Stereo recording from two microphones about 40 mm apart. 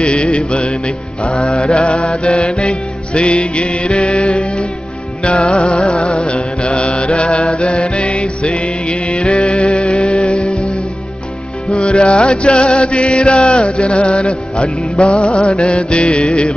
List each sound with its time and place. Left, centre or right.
0.0 s music: left
11.7 s music: left